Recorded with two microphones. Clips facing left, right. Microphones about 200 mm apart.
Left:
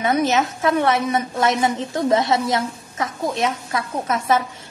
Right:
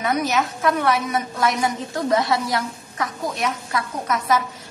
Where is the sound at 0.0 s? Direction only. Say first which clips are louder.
Left 3 dB; 25° left (ahead or behind).